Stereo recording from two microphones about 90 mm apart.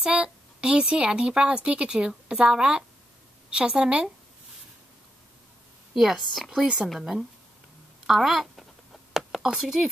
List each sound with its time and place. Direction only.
0.0 s speech: 10° right (ahead or behind)
5.9 s speech: 5° right (ahead or behind)
9.1 s a sound: 5° right (ahead or behind)